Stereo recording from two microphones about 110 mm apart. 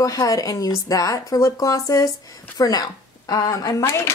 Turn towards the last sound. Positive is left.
turn(degrees=25)  # may be behind; listen again after turning